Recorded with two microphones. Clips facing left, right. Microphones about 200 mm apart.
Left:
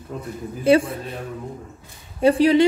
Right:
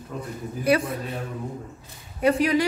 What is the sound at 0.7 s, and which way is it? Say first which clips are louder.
Speech: left 6 dB; 30° left (ahead or behind).